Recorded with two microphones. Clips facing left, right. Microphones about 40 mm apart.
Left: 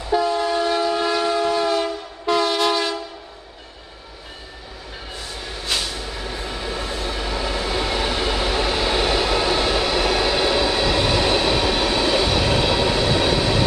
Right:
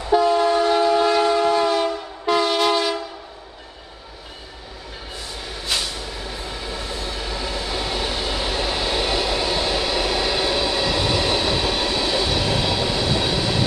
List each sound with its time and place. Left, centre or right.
0.0 s train: centre
5.4 s vehicle: centre
6.0 s train: centre
6.8 s train: left
7.1 s train: centre
7.3 s train: left
9.8 s train: centre; by 13.7 s left